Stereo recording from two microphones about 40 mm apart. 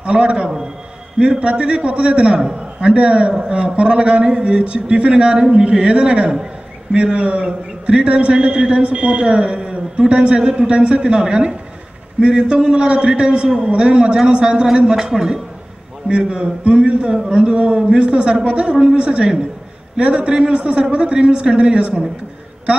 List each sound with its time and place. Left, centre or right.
0.0 s a man's voice: right
16.1 s a man's voice: right